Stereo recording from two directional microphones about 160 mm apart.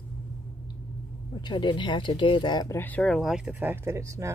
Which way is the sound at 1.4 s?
30° left (ahead or behind).